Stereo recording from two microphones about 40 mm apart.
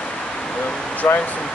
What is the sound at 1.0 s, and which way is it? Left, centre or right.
Speech, left.